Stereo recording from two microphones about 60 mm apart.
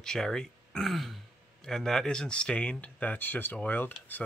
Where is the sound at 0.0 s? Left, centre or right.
Centre.